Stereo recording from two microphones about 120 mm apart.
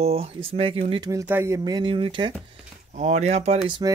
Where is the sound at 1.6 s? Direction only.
35° right (ahead or behind).